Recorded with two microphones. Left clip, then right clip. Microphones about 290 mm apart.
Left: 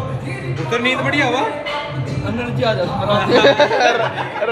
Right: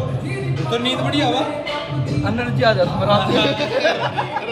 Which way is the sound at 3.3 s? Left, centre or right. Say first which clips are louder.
Left 7 dB; centre.